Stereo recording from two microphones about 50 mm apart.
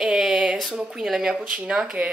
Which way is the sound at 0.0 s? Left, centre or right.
Centre.